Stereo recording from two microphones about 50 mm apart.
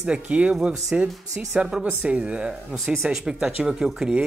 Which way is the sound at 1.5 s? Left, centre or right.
Centre.